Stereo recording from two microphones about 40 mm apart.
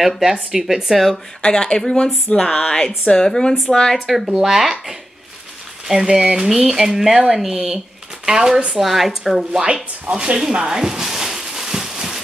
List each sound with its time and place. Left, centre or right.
0.2 s speech: centre
1.4 s a woman's voice: centre
4.4 s speech: centre
8.7 s speech: centre
10.1 s a sound: centre